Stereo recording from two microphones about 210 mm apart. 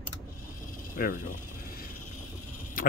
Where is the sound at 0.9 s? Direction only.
40° left (ahead or behind).